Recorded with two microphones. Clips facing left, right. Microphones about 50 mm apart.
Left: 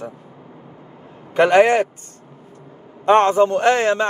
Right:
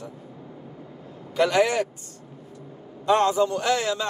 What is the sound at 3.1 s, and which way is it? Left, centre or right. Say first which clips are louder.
A man's voice: left 7 dB; left.